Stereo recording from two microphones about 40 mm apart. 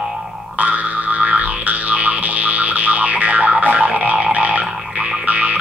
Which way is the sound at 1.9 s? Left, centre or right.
Right.